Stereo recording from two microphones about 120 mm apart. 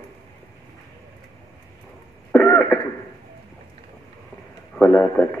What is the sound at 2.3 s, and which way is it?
Throat clearing, 10° left (ahead or behind).